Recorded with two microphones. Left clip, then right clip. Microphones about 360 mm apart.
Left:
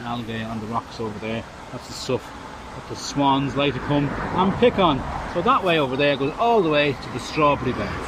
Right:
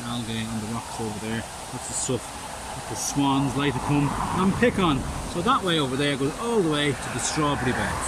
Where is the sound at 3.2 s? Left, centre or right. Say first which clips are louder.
Left 5 dB; centre.